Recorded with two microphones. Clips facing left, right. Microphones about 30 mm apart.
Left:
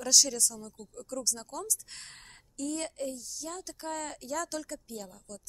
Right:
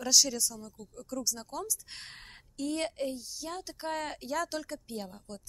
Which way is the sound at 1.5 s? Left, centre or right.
Centre.